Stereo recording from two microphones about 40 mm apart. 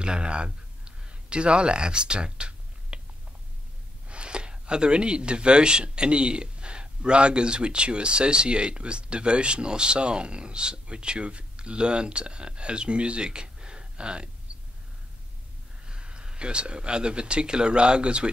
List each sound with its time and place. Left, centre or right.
0.0 s a sound: right
4.1 s speech: right
15.8 s speech: right